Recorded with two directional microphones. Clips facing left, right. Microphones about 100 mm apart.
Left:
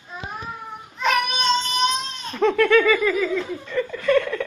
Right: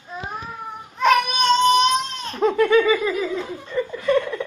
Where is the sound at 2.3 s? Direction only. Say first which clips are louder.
Even; 15° right (ahead or behind).